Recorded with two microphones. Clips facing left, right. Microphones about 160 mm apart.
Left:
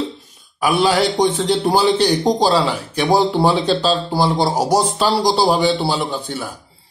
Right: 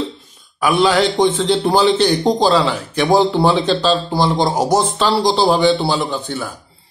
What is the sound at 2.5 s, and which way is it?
Speech, 35° left (ahead or behind).